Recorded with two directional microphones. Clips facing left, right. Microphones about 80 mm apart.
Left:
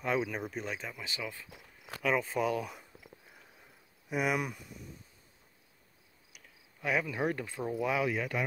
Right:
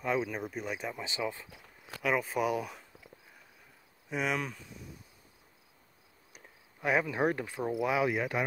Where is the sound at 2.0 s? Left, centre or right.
Centre.